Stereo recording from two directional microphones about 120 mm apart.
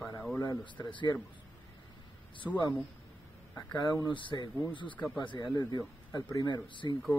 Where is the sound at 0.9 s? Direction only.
40° left (ahead or behind).